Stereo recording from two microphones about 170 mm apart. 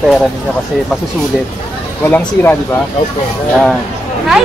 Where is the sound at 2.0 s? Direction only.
10° left (ahead or behind).